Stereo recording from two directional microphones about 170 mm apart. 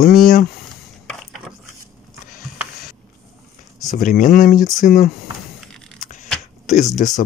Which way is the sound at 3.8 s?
50° left (ahead or behind).